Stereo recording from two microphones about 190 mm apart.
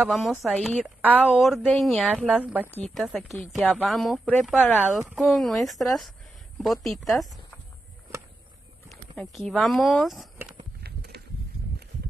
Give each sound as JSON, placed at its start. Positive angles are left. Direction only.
{"t": 0.0, "sound": "speech", "side_deg": 0}
{"t": 2.7, "sound": "speech", "side_deg": 5}
{"t": 8.8, "sound": "speech", "side_deg": 0}
{"t": 10.8, "sound": "walk", "side_deg": -55}